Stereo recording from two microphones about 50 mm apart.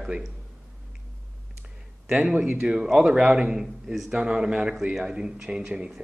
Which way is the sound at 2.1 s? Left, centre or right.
Centre.